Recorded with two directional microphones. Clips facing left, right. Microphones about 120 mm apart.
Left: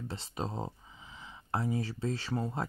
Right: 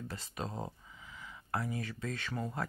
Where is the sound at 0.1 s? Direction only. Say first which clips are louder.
Left 3 dB; 25° left (ahead or behind).